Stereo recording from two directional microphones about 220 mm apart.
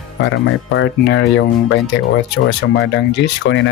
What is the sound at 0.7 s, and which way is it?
Speech, 55° left (ahead or behind).